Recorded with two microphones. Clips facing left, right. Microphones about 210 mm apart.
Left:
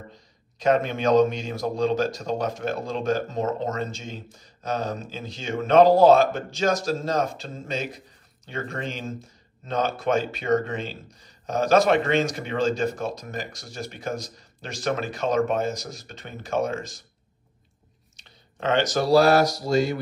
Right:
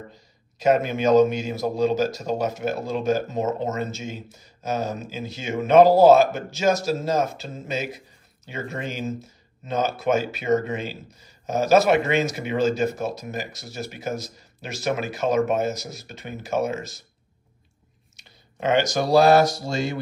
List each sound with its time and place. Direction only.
0.1 s speech: 5° right (ahead or behind)
18.1 s speech: 10° right (ahead or behind); by 19.6 s 25° right (ahead or behind)